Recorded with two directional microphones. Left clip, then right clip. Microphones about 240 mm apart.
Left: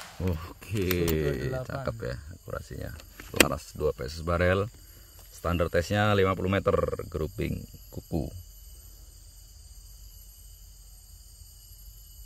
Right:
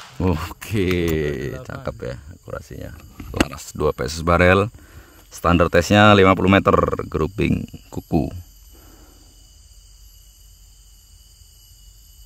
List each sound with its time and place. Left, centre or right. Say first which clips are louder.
0.2 s speech: right 13 dB; right
3.4 s speech: right 6 dB; right